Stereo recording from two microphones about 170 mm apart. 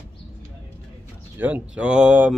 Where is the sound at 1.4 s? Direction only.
10° right (ahead or behind).